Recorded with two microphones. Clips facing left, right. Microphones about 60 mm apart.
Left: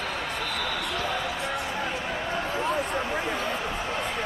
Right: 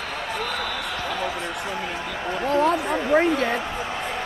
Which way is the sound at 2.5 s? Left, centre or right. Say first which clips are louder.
Right 9 dB; right.